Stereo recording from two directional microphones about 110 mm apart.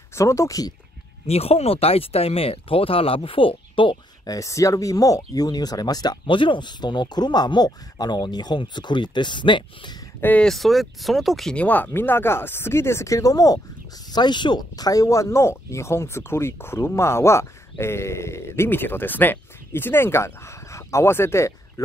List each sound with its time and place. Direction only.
0.1 s speech: 25° left (ahead or behind)
1.2 s speech: 65° left (ahead or behind); by 4.0 s 50° left (ahead or behind)
4.3 s speech: 30° left (ahead or behind); by 9.9 s 45° left (ahead or behind)
10.2 s speech: 15° left (ahead or behind)
10.5 s speech: centre (ahead or behind)
11.5 s speech: 15° left (ahead or behind)